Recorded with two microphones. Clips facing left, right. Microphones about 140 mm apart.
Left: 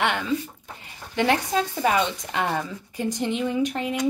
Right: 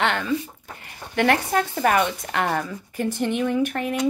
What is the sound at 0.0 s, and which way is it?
Speech, 15° left (ahead or behind).